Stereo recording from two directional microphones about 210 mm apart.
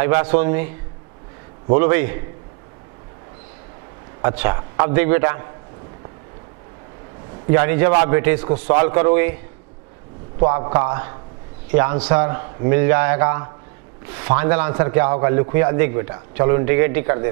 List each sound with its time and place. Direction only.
0.0 s a man's voice: 10° right (ahead or behind)
1.7 s a man's voice: 15° right (ahead or behind)
4.2 s a man's voice: 15° right (ahead or behind)
7.4 s a man's voice: 15° right (ahead or behind)
10.4 s a man's voice: 20° right (ahead or behind)